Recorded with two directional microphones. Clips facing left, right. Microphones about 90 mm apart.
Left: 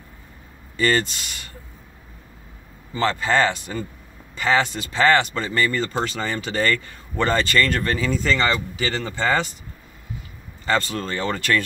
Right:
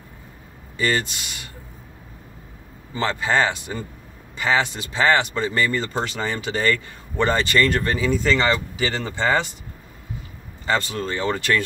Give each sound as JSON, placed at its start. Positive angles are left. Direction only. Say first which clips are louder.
{"t": 0.7, "sound": "speech", "louder": "left 2 dB", "side_deg": -15}
{"t": 2.9, "sound": "speech", "louder": "left 1 dB", "side_deg": -15}
{"t": 10.6, "sound": "speech", "louder": "even", "side_deg": -20}